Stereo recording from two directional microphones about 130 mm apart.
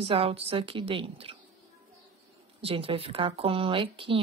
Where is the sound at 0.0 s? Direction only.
45° right (ahead or behind).